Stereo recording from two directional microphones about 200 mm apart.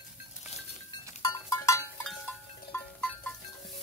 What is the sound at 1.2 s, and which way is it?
Goat, 15° left (ahead or behind).